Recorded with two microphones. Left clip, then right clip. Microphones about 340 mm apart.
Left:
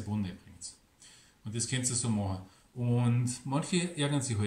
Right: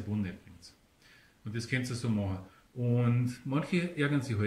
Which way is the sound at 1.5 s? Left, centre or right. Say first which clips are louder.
Left 1 dB; centre.